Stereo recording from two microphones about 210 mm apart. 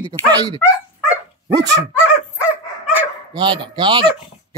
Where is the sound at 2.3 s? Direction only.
5° right (ahead or behind).